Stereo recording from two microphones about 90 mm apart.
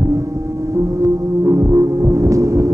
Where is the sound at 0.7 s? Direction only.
35° right (ahead or behind).